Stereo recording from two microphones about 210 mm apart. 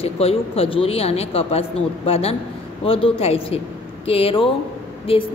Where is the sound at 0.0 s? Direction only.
30° left (ahead or behind).